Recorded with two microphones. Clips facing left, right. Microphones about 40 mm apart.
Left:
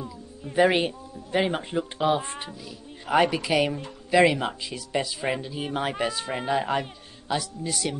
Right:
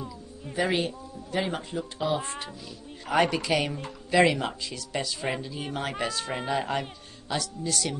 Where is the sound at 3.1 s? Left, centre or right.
Centre.